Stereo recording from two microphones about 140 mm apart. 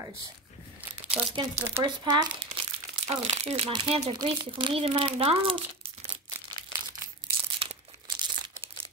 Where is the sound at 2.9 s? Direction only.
45° right (ahead or behind).